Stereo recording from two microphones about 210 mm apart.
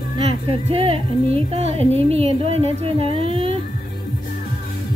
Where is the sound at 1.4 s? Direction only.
30° right (ahead or behind).